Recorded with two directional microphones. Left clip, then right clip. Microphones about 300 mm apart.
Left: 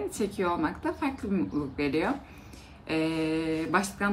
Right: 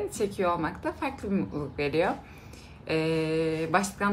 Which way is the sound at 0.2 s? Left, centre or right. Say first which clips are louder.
Right 1 dB; centre.